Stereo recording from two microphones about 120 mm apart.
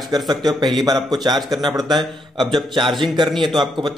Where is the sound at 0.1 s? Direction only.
35° right (ahead or behind).